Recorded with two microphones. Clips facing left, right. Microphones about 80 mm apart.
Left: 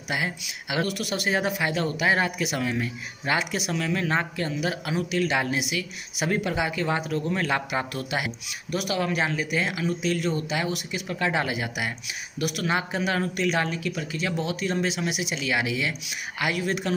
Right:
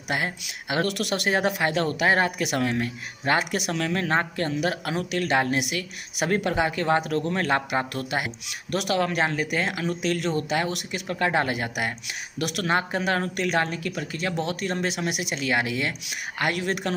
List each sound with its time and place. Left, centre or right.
0.1 s speech: right
0.8 s speech: right
7.2 s speech: right
8.5 s speech: right
12.6 s speech: right